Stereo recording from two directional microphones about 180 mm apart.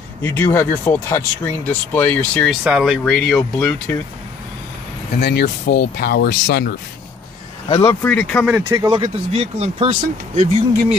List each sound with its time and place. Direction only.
0.2 s speech: 15° left (ahead or behind)
2.6 s speech: 5° right (ahead or behind)
5.2 s speech: 60° left (ahead or behind)
7.9 s speech: 10° left (ahead or behind)
8.5 s speech: 20° right (ahead or behind); by 10.9 s 40° right (ahead or behind)